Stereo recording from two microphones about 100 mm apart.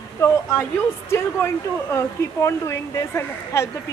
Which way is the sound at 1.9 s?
30° left (ahead or behind).